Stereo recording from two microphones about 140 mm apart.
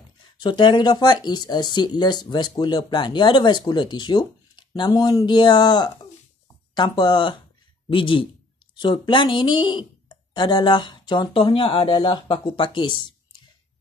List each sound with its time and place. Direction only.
0.4 s speech: 35° left (ahead or behind)